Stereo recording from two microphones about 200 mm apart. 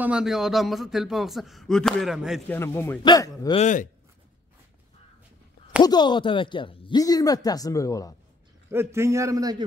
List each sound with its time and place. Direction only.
0.0 s a man's voice: 5° right (ahead or behind)
2.4 s speech: 10° left (ahead or behind)
3.6 s speech: 40° left (ahead or behind)
5.8 s speech: 20° left (ahead or behind)
8.6 s a man's voice: 15° right (ahead or behind)